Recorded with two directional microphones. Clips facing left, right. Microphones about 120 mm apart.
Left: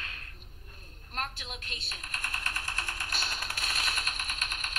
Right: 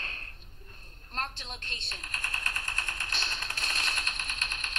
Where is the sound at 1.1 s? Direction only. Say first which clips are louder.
Even; 30° right (ahead or behind).